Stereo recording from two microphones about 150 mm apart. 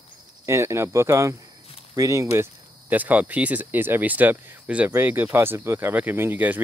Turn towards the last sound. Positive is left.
turn(degrees=-10)  # may be behind; listen again after turning